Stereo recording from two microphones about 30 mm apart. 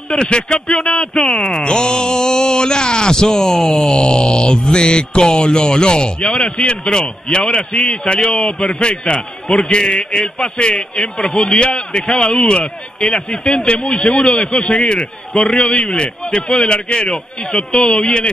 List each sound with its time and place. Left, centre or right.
0.1 s a man's voice: left
3.3 s speech: centre
3.9 s a man's voice: left